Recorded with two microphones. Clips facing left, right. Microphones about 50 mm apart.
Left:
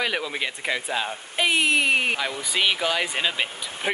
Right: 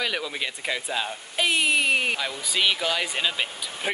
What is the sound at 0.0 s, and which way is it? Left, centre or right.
Speech, centre.